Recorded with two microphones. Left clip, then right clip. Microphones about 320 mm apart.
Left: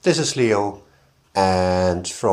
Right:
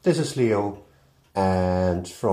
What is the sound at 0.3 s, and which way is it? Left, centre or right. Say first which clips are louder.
Speech: left 4 dB; left.